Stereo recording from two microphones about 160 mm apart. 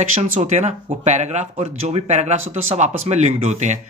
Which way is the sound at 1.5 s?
35° right (ahead or behind).